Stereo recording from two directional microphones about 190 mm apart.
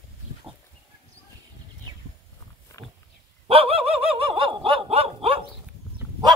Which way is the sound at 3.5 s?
30° right (ahead or behind).